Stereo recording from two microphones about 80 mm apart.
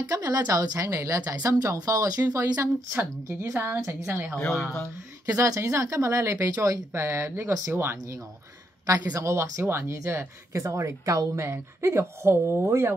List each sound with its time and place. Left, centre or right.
0.0 s speech: right
2.9 s speech: right
4.5 s speech: centre
5.2 s speech: right
8.8 s speech: right
9.3 s speech: right